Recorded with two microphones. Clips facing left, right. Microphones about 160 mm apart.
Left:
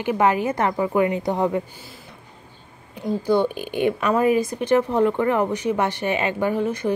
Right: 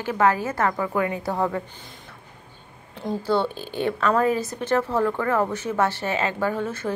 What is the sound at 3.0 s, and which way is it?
A woman's voice, 15° left (ahead or behind).